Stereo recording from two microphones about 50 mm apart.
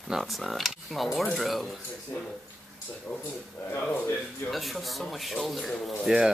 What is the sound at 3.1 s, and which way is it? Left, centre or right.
Speech, left.